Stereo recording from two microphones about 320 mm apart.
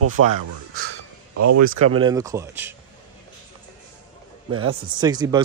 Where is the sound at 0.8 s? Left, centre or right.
Right.